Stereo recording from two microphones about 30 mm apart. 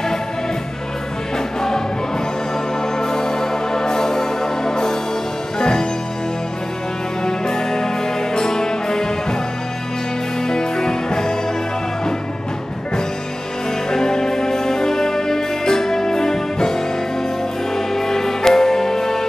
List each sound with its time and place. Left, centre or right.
3.0 s music: left
7.2 s music: left
10.5 s music: left
13.8 s music: left